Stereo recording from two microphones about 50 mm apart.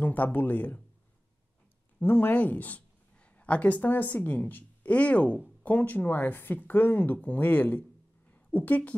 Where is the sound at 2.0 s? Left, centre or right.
Left.